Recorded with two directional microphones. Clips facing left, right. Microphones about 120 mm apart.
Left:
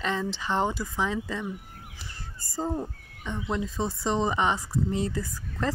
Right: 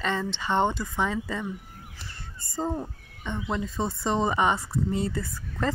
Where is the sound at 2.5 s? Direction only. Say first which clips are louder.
Even; centre (ahead or behind).